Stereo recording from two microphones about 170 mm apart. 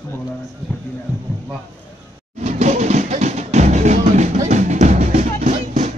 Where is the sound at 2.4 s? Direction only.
45° right (ahead or behind).